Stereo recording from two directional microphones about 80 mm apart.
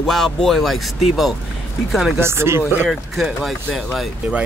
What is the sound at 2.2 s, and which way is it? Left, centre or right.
Speech, right.